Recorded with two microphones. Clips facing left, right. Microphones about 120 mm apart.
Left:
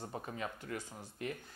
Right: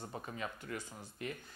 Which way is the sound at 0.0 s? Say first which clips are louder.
Left 1 dB; 30° left (ahead or behind).